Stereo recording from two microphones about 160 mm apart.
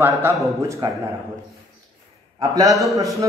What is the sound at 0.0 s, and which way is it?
Speech, 15° right (ahead or behind).